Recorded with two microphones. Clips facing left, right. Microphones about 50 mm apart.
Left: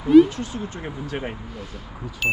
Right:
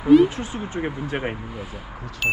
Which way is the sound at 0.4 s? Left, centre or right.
Right.